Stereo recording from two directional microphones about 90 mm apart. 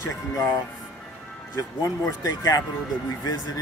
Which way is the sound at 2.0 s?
40° left (ahead or behind).